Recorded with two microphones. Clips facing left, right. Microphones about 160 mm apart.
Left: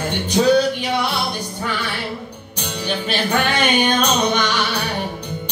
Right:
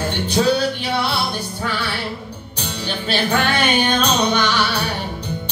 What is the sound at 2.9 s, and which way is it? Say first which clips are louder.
Music: even; 15° left (ahead or behind).